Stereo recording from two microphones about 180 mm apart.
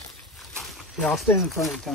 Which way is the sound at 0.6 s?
5° left (ahead or behind).